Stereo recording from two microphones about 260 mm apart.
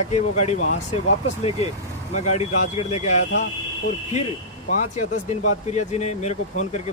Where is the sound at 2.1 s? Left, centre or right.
Left.